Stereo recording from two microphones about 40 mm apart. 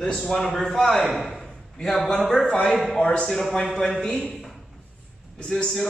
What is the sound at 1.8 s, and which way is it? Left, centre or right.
Speech, centre.